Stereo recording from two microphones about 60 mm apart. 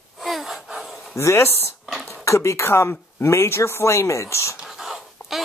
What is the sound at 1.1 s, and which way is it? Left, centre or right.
Speech, left.